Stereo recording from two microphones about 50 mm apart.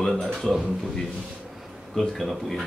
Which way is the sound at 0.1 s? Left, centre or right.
Centre.